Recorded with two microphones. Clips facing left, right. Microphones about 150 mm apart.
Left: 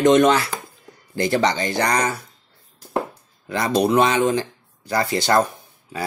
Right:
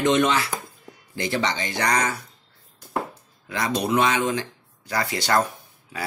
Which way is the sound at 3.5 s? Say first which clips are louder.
Left 5 dB; 35° left (ahead or behind).